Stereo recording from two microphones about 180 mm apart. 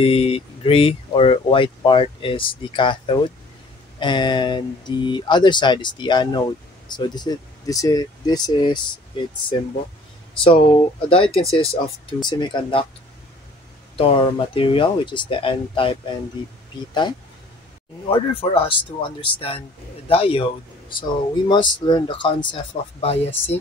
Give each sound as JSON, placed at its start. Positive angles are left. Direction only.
{"t": 0.0, "sound": "speech", "side_deg": 30}
{"t": 10.3, "sound": "speech", "side_deg": 30}
{"t": 13.9, "sound": "speech", "side_deg": 30}
{"t": 18.0, "sound": "speech", "side_deg": 30}